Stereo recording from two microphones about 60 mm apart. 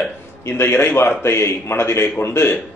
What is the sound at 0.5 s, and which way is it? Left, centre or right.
A man's voice, left.